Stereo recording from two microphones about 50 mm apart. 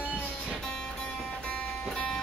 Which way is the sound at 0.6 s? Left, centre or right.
Centre.